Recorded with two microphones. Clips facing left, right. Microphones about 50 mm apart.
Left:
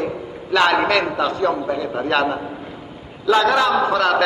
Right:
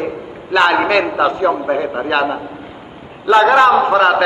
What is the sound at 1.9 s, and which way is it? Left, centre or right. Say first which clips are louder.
Speech: right 2 dB; centre.